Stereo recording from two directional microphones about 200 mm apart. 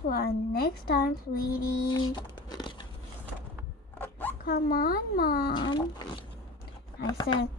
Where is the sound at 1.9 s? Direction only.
20° left (ahead or behind).